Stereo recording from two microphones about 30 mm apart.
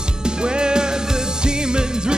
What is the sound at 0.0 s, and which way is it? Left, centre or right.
Music, right.